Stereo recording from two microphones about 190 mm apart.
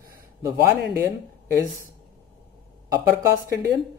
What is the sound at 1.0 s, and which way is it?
Speech, 15° right (ahead or behind).